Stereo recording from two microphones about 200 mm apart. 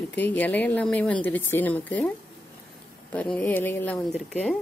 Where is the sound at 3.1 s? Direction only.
5° left (ahead or behind).